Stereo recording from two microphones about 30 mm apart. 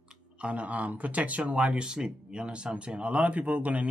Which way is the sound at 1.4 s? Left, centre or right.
Right.